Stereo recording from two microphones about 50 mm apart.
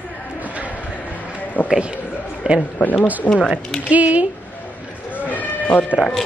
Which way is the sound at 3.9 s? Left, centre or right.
Right.